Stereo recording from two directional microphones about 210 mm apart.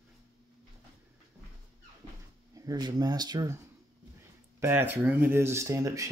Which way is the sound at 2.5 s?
15° right (ahead or behind).